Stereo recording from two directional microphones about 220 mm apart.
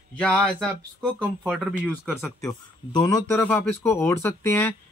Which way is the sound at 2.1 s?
10° left (ahead or behind).